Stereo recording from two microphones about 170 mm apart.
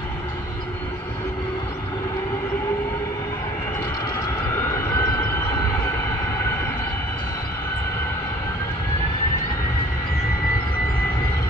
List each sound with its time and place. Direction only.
4.2 s vehicle: 15° left (ahead or behind)